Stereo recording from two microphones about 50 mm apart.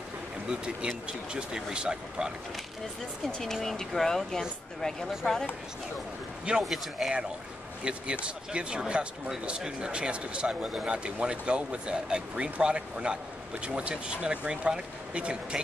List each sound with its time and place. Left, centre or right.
0.5 s speech: centre
3.3 s speech: centre
6.6 s speech: centre
7.8 s speech: centre